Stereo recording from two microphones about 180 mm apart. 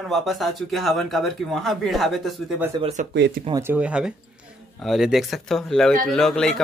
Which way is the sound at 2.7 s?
30° right (ahead or behind).